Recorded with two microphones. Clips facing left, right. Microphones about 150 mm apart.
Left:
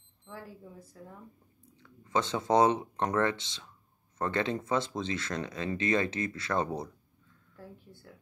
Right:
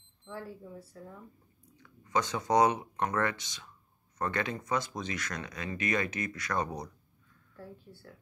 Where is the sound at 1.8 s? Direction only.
25° left (ahead or behind).